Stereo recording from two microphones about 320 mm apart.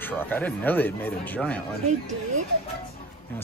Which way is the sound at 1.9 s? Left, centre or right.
Right.